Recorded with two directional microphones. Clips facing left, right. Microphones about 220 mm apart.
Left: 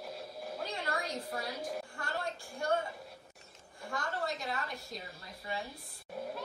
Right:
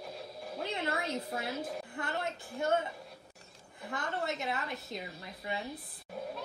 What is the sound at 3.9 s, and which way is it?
A woman's voice, 20° right (ahead or behind).